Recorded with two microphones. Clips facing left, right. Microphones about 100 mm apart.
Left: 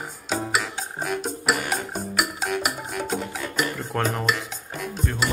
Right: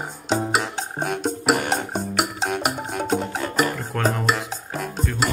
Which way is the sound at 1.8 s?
70° right (ahead or behind).